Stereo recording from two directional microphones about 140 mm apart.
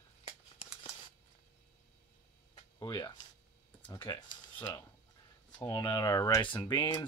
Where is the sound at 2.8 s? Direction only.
30° left (ahead or behind).